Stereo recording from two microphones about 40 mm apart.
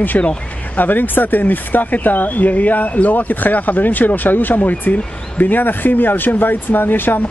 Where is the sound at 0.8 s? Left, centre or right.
Left.